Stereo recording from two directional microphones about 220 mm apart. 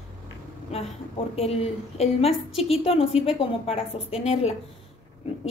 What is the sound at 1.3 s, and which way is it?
A woman's voice, 30° left (ahead or behind).